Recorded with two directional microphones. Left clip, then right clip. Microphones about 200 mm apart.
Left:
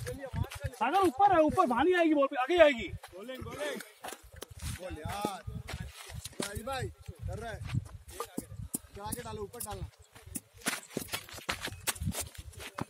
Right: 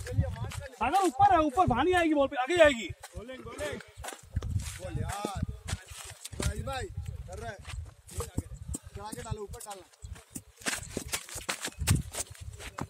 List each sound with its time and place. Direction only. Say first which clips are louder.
0.2 s a sound: right 2 dB; centre (ahead or behind)
0.7 s speech: right 1 dB; 35° right (ahead or behind)
1.2 s speech: right 2 dB; 50° right (ahead or behind)
3.2 s speech: even; 55° left (ahead or behind)
4.7 s speech: even; centre (ahead or behind)
6.4 s speech: even; centre (ahead or behind)
7.6 s a sound: left 2 dB; 20° right (ahead or behind)
8.9 s speech: even; centre (ahead or behind)
10.6 s a sound: right 1 dB; 30° right (ahead or behind)
11.8 s walk: right 2 dB; 10° right (ahead or behind)